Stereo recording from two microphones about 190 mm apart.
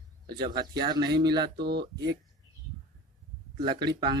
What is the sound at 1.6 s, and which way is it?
Speech, 60° right (ahead or behind).